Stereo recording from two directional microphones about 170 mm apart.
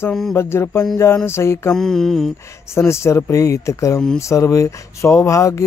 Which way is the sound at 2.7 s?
15° left (ahead or behind).